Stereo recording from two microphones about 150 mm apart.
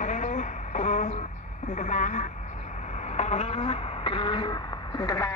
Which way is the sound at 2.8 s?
50° left (ahead or behind).